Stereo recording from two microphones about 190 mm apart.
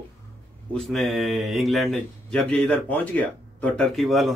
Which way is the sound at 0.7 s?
Centre (ahead or behind).